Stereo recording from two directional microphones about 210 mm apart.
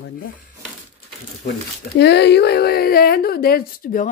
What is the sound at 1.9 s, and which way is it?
Speech, 55° left (ahead or behind).